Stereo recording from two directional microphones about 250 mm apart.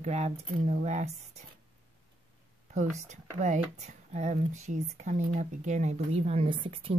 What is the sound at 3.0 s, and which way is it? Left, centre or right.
Speech, right.